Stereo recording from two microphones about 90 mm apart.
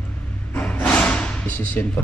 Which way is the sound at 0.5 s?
15° left (ahead or behind).